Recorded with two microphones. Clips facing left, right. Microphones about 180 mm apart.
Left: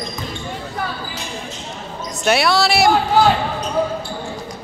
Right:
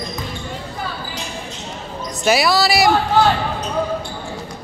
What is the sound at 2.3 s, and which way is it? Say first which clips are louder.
Speech: even; centre (ahead or behind).